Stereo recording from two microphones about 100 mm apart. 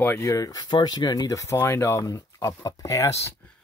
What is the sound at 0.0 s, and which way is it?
Speech, 20° left (ahead or behind).